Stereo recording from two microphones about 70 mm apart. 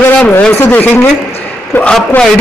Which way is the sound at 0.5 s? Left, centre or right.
Left.